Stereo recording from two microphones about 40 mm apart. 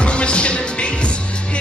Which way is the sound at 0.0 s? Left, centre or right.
Left.